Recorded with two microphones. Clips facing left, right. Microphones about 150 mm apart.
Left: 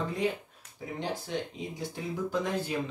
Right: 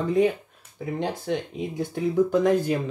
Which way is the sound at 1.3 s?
65° right (ahead or behind).